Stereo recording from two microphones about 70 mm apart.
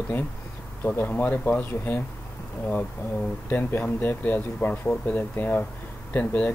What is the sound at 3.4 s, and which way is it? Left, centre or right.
Speech, left.